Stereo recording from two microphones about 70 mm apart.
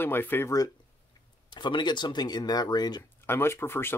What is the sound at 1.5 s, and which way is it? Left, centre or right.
Speech, left.